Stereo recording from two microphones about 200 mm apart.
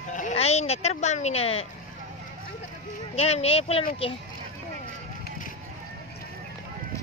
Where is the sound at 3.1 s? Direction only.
30° left (ahead or behind).